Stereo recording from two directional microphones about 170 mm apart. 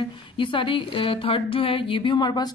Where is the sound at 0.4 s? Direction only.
30° left (ahead or behind).